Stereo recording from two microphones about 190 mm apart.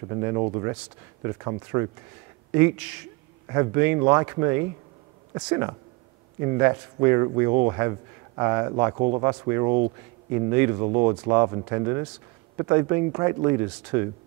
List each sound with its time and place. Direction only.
0.1 s speech: 25° right (ahead or behind)
10.5 s speech: 15° right (ahead or behind)
10.8 s speech: 25° right (ahead or behind)